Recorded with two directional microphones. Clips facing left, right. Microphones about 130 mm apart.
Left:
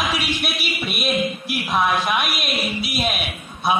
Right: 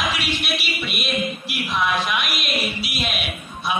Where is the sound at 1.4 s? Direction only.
45° left (ahead or behind).